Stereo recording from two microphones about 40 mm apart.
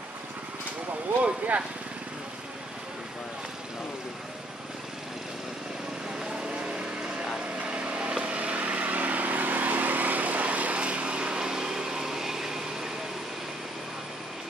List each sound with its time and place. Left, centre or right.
1.2 s speech: right
6.1 s vehicle: right